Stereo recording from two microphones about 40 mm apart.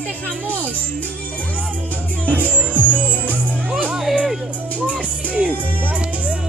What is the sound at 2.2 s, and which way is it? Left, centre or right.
Speech, right.